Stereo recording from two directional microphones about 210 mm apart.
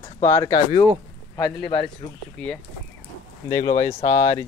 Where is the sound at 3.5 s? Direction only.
15° left (ahead or behind).